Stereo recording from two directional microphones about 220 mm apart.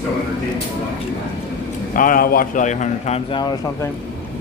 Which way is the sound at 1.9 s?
40° left (ahead or behind).